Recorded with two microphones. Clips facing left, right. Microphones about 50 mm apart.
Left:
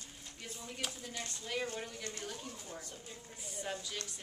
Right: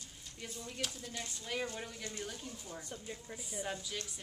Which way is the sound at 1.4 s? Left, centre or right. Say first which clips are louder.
Left 1 dB; centre.